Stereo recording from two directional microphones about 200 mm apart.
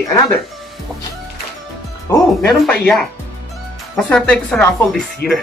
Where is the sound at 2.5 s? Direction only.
5° left (ahead or behind).